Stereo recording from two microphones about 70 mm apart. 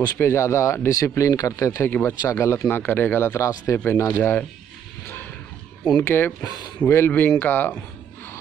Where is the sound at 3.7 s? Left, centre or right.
Left.